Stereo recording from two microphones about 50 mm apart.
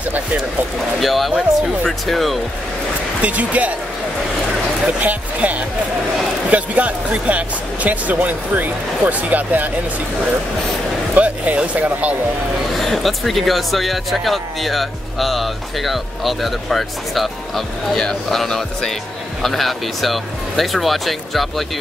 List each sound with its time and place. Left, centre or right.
1.0 s speech: centre
3.2 s speech: right
5.0 s speech: right
11.1 s speech: right
12.8 s speech: centre